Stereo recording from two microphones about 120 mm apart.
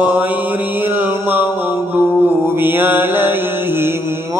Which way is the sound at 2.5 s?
20° right (ahead or behind).